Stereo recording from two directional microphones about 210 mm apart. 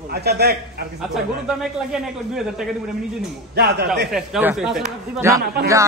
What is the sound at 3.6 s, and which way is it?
Speech, 50° right (ahead or behind).